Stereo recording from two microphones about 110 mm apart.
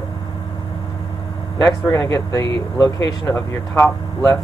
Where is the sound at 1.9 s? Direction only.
35° left (ahead or behind).